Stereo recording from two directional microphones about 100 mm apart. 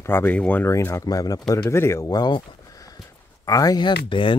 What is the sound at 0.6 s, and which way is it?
Speech, 30° left (ahead or behind).